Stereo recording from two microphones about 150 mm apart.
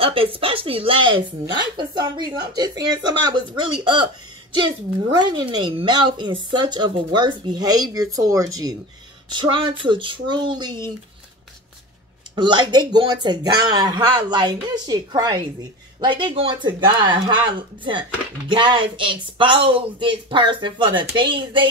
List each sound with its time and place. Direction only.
0.0 s a woman's voice: 40° right (ahead or behind)
12.4 s a woman's voice: 30° right (ahead or behind)